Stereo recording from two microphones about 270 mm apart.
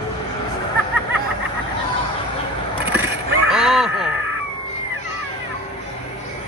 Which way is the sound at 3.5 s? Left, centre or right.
Centre.